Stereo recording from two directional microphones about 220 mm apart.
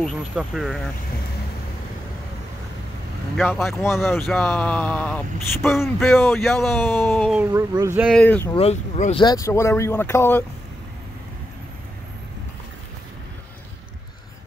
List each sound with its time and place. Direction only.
0.0 s speech: centre (ahead or behind)
3.3 s speech: centre (ahead or behind)
3.7 s speech: 10° left (ahead or behind)
7.3 s speech: 10° right (ahead or behind)
8.1 s speech: 5° left (ahead or behind)
8.5 s speech: 30° left (ahead or behind); by 10.4 s 10° left (ahead or behind)